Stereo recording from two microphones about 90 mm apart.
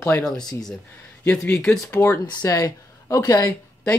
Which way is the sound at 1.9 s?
25° left (ahead or behind).